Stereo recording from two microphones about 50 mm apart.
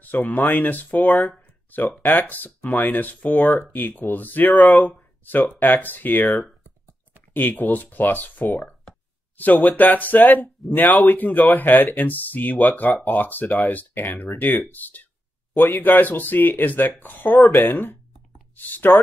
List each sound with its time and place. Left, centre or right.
0.0 s speech: left